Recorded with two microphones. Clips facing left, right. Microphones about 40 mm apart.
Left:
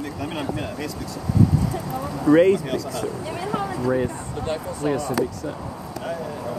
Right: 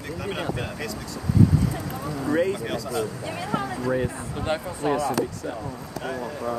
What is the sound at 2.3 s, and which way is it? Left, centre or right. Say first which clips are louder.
Speech: left 9 dB; left.